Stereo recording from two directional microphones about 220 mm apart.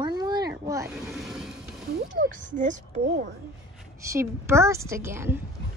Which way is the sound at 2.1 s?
35° right (ahead or behind).